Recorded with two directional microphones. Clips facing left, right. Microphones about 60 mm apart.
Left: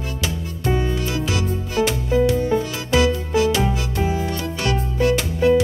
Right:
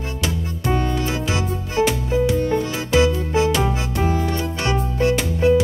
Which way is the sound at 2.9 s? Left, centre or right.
Right.